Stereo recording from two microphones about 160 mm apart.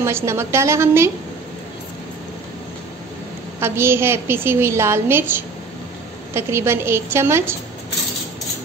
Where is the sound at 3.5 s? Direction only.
15° right (ahead or behind).